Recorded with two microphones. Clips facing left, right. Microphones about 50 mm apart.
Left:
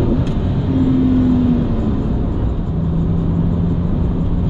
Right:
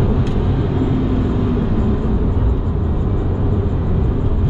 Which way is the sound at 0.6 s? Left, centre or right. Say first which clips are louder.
Left 7 dB; centre.